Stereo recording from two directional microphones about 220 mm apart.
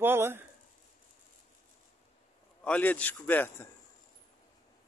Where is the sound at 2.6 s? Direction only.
5° left (ahead or behind).